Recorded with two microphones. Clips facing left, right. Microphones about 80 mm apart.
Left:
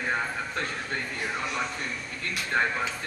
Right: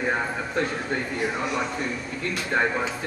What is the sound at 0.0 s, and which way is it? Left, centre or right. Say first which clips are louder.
Speech: right 3 dB; centre.